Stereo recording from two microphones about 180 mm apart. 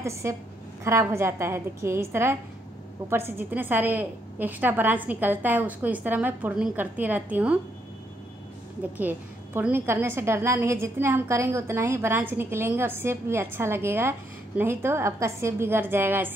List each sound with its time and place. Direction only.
0.0 s a woman's voice: 15° right (ahead or behind)
8.9 s a woman's voice: 10° right (ahead or behind)